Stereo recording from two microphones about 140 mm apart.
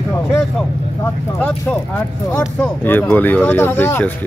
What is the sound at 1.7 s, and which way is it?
Speech, 5° left (ahead or behind).